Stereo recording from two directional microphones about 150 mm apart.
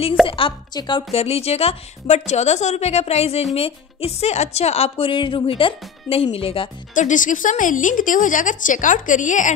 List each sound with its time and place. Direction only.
0.3 s a woman's voice: 35° left (ahead or behind)
6.9 s a woman's voice: 55° left (ahead or behind)